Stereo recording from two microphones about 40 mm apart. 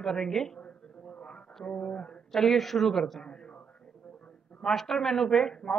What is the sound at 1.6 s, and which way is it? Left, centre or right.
Speech, left.